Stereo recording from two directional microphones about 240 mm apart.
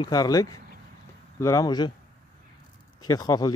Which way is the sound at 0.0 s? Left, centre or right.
Centre.